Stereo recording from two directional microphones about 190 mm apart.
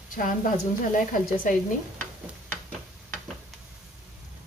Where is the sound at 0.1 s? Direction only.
45° left (ahead or behind).